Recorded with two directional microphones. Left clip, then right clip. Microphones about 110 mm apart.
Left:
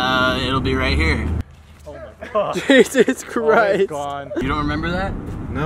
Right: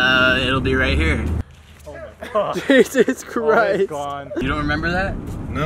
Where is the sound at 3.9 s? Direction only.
35° left (ahead or behind).